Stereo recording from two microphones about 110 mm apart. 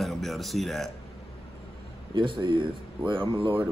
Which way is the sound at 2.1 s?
45° right (ahead or behind).